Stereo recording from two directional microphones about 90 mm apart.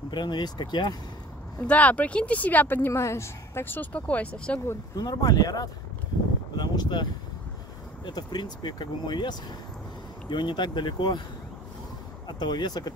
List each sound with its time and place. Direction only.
0.1 s speech: 55° left (ahead or behind)
1.7 s speech: 15° left (ahead or behind)
2.9 s speech: 30° left (ahead or behind); by 4.6 s 15° left (ahead or behind)
4.9 s speech: 45° left (ahead or behind)
6.5 s a sound: 50° left (ahead or behind)
8.0 s speech: 55° left (ahead or behind)
12.3 s speech: 55° left (ahead or behind)